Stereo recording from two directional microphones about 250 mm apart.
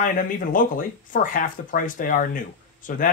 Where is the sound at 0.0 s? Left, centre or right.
Left.